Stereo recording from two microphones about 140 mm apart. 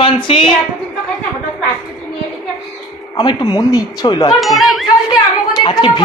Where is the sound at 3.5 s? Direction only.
25° left (ahead or behind).